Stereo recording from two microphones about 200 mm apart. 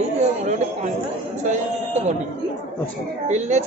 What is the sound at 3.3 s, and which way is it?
Speech, 35° right (ahead or behind).